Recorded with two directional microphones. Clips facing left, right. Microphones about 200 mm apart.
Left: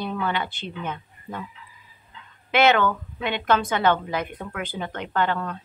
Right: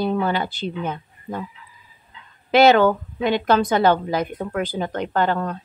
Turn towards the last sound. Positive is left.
turn(degrees=-40)  # may be behind; listen again after turning